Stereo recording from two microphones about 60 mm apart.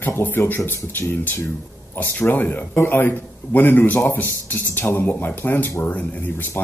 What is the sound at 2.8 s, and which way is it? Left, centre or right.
Speech, left.